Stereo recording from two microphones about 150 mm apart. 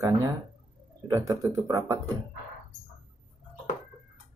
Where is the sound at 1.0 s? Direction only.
20° right (ahead or behind).